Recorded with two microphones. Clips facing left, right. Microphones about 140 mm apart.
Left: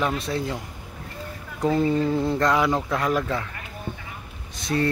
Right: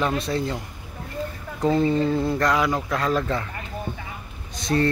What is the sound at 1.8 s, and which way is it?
Speech, 10° left (ahead or behind).